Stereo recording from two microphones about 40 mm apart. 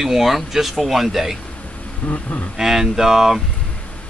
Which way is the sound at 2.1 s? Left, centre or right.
Left.